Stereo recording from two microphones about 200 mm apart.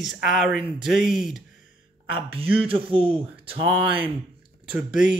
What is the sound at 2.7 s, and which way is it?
Speech, 25° right (ahead or behind).